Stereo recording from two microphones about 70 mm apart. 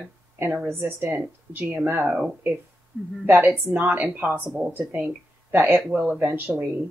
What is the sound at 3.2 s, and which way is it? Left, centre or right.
A woman's voice, right.